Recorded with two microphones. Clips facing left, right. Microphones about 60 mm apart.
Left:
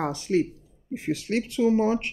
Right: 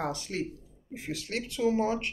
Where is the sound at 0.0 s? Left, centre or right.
Left.